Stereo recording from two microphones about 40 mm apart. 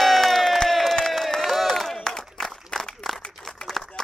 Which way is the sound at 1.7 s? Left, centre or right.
Centre.